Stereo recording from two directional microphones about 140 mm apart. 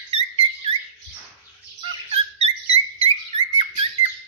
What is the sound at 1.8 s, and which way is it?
Dog, 45° right (ahead or behind).